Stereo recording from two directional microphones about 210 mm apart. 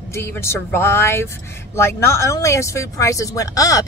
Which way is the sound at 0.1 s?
10° left (ahead or behind).